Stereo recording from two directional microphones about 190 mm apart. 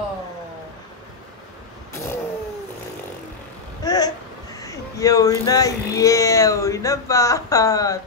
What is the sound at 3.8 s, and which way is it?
Speech, 20° left (ahead or behind).